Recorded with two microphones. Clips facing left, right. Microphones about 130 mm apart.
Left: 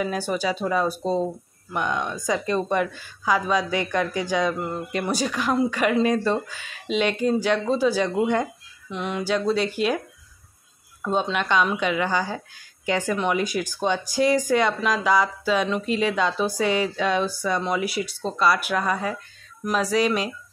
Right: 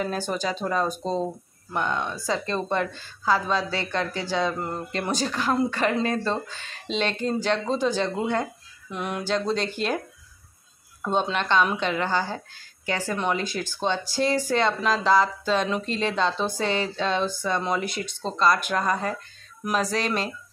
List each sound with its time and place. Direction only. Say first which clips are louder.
0.0 s a woman's voice: left 2 dB; 10° left (ahead or behind)
8.9 s a sound: left 2 dB; 5° right (ahead or behind)
9.2 s a woman's voice: left 3 dB; 10° left (ahead or behind)
11.1 s a woman's voice: left 1 dB; 5° left (ahead or behind)